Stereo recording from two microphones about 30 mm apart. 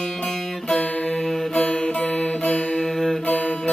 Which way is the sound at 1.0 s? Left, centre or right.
Centre.